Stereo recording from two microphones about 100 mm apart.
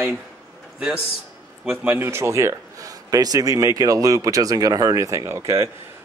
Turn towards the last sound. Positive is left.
turn(degrees=-30)  # may be behind; listen again after turning